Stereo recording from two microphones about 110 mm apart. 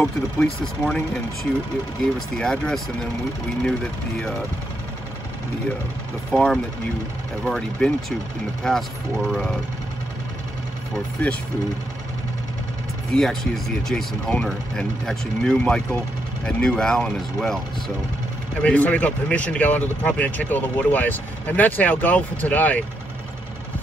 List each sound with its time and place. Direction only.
0.0 s speech: 5° left (ahead or behind)
6.3 s speech: centre (ahead or behind)
13.1 s speech: 5° left (ahead or behind)